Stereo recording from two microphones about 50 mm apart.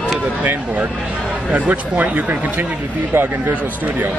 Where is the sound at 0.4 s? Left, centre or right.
Right.